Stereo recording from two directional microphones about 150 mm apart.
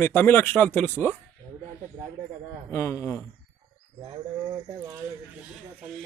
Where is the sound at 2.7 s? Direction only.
20° left (ahead or behind).